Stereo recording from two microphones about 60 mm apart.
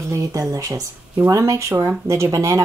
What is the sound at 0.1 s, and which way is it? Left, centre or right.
Speech, right.